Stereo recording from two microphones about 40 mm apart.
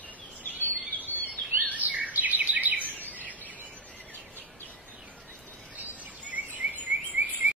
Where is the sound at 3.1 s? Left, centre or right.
Right.